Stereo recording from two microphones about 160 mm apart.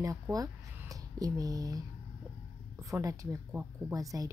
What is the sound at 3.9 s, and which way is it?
Speech, 20° right (ahead or behind).